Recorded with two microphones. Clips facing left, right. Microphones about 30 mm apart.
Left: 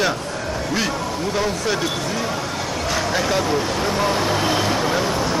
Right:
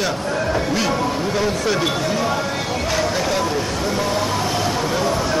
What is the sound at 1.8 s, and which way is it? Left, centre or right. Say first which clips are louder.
Speech: right 3 dB; centre.